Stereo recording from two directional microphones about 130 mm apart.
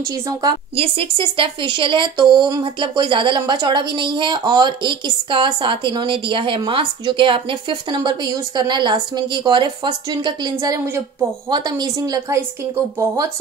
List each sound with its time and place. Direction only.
0.3 s speech: 30° right (ahead or behind)
0.7 s speech: 45° right (ahead or behind)
11.5 s a woman's voice: 30° right (ahead or behind)